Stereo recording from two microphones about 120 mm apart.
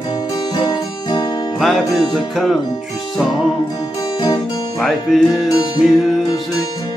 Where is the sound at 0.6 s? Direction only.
35° left (ahead or behind).